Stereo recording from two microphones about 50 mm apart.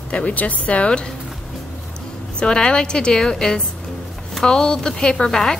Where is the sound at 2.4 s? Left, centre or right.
Centre.